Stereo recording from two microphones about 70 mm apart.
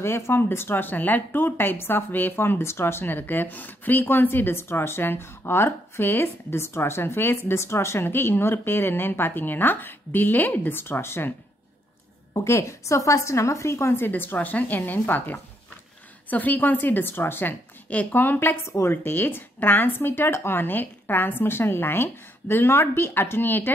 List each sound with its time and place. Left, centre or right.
0.0 s speech: left
12.4 s a woman's voice: left
18.7 s speech: left